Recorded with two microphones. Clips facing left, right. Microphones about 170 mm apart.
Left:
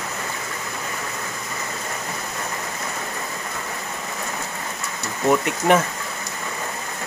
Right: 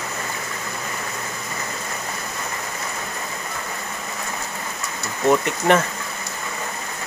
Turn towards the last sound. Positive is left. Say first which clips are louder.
# even
turn(degrees=5)  # may be behind; listen again after turning